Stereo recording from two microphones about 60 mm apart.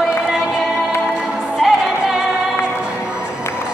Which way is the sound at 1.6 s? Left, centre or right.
Centre.